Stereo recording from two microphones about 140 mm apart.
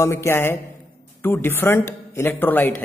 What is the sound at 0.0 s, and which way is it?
A man's voice, 20° left (ahead or behind).